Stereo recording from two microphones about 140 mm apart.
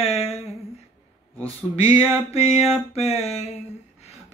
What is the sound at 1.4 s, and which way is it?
Speech, 40° left (ahead or behind).